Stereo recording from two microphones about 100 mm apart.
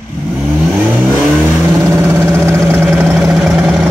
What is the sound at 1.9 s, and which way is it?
Vehicle, 25° right (ahead or behind).